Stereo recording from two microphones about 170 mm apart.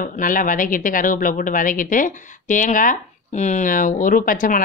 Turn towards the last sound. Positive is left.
turn(degrees=50)  # may be behind; listen again after turning